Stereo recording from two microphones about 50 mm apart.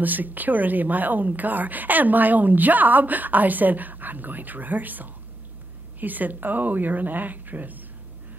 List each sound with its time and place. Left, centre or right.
0.0 s a woman's voice: right